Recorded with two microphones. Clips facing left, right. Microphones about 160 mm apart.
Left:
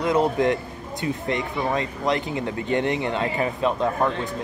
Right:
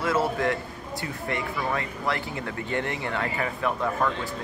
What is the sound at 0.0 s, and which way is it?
Speech, 20° left (ahead or behind).